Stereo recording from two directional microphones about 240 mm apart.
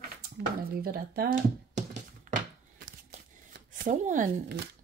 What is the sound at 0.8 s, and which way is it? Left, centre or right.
Speech, right.